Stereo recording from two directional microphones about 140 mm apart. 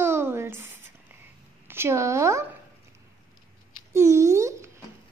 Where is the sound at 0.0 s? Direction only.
15° right (ahead or behind).